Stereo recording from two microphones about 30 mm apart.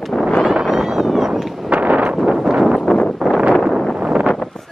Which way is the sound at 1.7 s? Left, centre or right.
Right.